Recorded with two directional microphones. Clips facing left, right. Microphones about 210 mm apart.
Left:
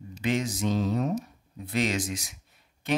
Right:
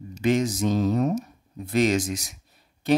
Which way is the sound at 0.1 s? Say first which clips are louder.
Right 6 dB; 45° right (ahead or behind).